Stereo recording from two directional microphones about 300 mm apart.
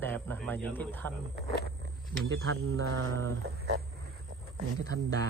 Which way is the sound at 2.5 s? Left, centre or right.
Right.